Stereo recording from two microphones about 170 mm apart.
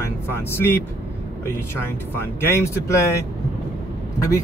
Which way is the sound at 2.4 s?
15° left (ahead or behind).